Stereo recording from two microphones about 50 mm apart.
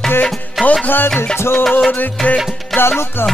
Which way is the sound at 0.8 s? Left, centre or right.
Left.